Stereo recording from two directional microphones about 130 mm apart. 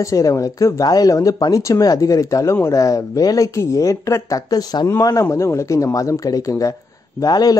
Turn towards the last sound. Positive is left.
turn(degrees=30)  # may be behind; listen again after turning